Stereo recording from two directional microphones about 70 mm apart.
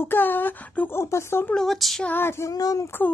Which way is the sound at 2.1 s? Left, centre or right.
Left.